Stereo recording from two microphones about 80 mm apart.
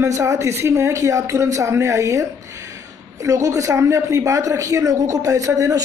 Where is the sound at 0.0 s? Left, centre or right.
Right.